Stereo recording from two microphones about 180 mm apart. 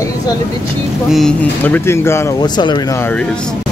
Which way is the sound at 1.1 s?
5° left (ahead or behind).